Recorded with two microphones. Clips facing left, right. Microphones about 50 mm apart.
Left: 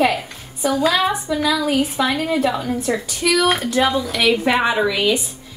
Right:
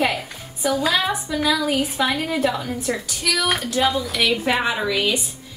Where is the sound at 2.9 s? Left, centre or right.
Left; by 4.7 s centre.